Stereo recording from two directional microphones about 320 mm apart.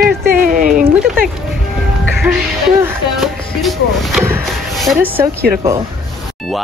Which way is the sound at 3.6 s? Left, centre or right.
Centre.